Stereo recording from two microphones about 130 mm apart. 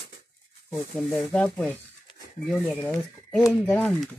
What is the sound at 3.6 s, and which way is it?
Speech, 15° left (ahead or behind).